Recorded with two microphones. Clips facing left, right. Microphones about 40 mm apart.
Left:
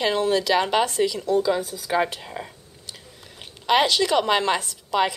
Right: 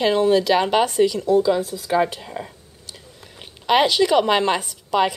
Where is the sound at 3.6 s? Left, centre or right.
Centre.